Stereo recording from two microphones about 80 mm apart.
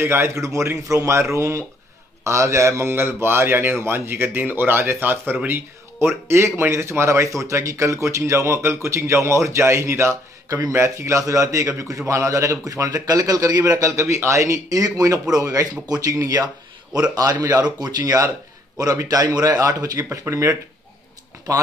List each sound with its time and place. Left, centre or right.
0.0 s a man's voice: right
19.3 s a man's voice: right